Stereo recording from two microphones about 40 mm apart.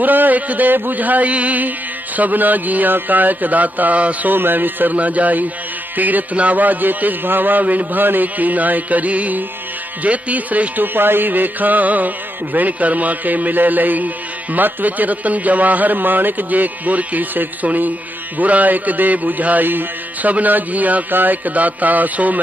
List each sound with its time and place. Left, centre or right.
0.0 s a man's voice: right
4.3 s a man's voice: right
4.9 s a man's voice: right
11.0 s a man's voice: right